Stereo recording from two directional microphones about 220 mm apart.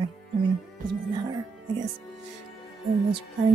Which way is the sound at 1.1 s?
20° right (ahead or behind).